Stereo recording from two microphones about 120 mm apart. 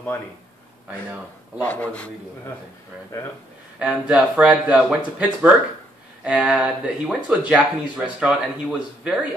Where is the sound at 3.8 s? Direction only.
10° right (ahead or behind).